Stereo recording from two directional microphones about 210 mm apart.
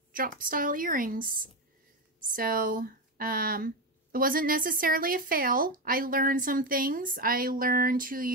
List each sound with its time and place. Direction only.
0.1 s a woman's voice: 40° right (ahead or behind)
2.3 s speech: 40° right (ahead or behind)